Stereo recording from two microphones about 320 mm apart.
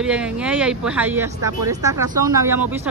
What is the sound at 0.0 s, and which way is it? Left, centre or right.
Speech, centre.